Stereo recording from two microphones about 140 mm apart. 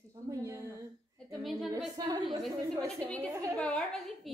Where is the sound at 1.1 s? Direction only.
Centre (ahead or behind).